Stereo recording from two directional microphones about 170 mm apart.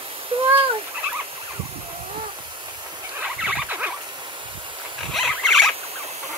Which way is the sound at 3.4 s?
10° right (ahead or behind).